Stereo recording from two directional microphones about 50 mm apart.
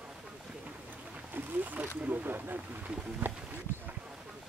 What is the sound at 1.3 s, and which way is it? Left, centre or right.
Wild animals, right.